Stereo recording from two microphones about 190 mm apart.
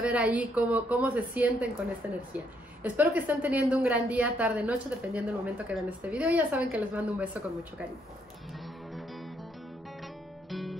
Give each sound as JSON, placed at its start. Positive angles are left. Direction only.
{"t": 0.0, "sound": "a woman's voice", "side_deg": -10}
{"t": 8.9, "sound": "music", "side_deg": 0}
{"t": 10.5, "sound": "guitar", "side_deg": 0}